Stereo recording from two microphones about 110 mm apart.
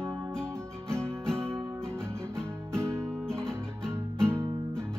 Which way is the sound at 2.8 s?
25° right (ahead or behind).